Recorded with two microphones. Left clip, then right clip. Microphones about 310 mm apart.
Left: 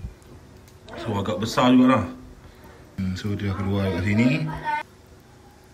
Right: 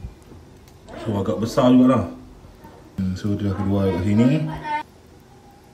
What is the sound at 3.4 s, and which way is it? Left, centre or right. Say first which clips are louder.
Speech: right 5 dB; centre.